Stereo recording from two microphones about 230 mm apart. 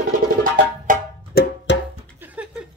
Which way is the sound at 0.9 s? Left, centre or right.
Right.